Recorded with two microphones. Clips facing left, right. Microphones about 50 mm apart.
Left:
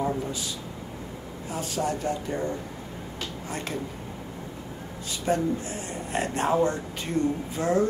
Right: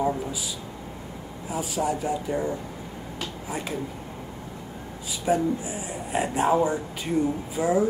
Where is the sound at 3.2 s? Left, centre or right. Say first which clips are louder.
Right 2 dB; centre.